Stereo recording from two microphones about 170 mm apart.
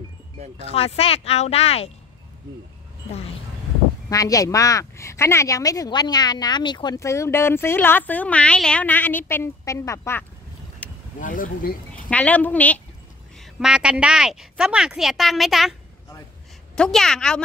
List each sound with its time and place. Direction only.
0.7 s speech: 35° left (ahead or behind)
4.1 s speech: 20° left (ahead or behind)
11.1 s speech: 50° left (ahead or behind)
11.9 s speech: 10° left (ahead or behind)
13.4 s a woman's voice: 5° right (ahead or behind)
16.7 s a woman's voice: 5° left (ahead or behind)